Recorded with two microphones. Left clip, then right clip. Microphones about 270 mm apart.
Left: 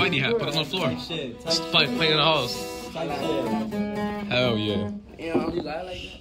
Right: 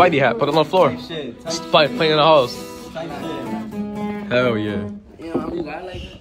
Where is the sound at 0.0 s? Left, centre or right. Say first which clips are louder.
Right 9 dB; centre.